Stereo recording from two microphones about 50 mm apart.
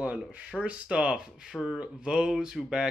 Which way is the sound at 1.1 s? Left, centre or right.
Centre.